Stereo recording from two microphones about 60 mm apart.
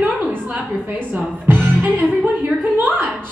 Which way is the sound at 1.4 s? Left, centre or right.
Right.